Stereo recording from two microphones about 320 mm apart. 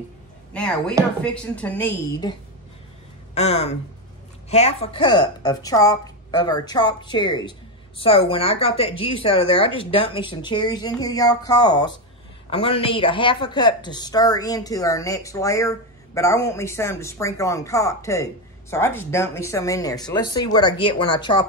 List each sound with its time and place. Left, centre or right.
0.5 s a woman's voice: centre
3.3 s a woman's voice: centre